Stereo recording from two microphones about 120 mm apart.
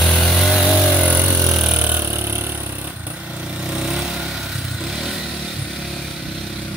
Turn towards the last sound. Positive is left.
turn(degrees=0)  # may be behind; listen again after turning